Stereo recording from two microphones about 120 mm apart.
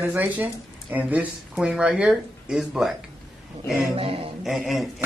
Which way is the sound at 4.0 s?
50° right (ahead or behind).